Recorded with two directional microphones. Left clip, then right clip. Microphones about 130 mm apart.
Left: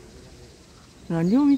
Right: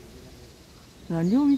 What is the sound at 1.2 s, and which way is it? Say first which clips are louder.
Speech: left 2 dB; 10° left (ahead or behind).